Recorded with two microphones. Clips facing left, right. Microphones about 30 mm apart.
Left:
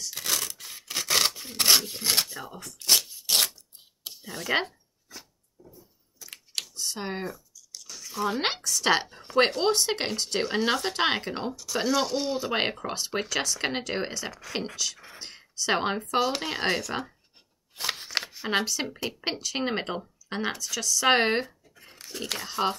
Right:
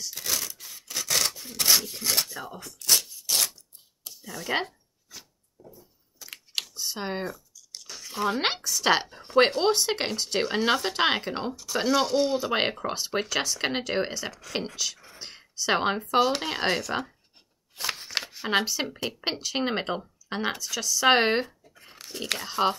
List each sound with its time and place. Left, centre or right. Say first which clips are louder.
0.1 s scissors: left 2 dB; centre
0.5 s scissors: left 2 dB; left
1.0 s rub: left 2 dB; left
2.3 s speech: right 1 dB; centre
2.8 s a sound: left 1 dB; left
4.5 s speech: left 2 dB; centre
6.3 s computer keyboard: right 2 dB; centre
7.7 s a sound: right 1 dB; right
8.6 s speech: even; centre
17.7 s a sound: even; centre
18.3 s speech: right 3 dB; centre